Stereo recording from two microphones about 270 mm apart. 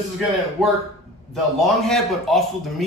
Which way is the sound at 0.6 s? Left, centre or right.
Centre.